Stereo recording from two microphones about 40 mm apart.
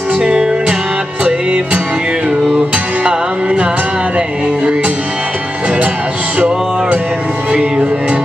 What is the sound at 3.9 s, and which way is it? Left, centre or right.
Music, right.